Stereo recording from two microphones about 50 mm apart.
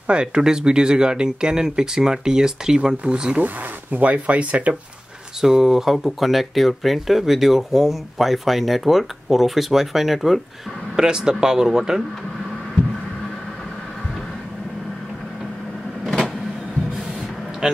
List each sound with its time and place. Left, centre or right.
0.0 s speech: centre
5.4 s speech: centre
11.0 s speech: centre
17.6 s speech: centre